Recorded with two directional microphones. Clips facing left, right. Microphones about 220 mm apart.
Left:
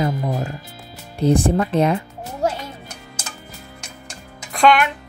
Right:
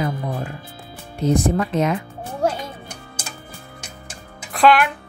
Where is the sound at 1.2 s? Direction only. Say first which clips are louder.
Left 2 dB; 30° left (ahead or behind).